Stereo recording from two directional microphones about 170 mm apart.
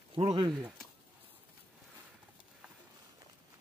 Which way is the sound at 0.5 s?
5° right (ahead or behind).